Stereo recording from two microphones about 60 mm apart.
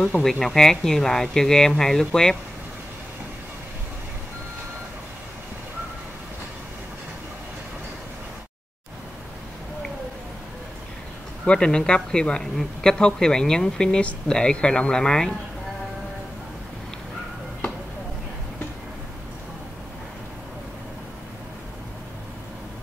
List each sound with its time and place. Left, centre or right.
0.2 s speech: centre
11.4 s speech: centre